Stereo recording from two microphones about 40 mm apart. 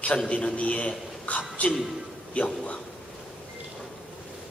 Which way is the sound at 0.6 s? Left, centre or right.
Left.